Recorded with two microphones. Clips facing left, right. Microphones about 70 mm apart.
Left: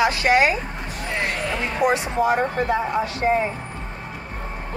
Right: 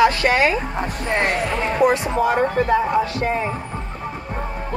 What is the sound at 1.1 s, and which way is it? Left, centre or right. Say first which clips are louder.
Speech: right 5 dB; right.